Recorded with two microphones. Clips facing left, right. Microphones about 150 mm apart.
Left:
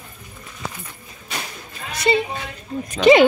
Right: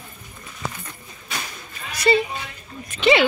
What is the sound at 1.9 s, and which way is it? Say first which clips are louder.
Speech: even; 25° left (ahead or behind).